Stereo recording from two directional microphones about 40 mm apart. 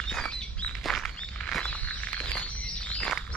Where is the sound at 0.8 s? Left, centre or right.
Centre.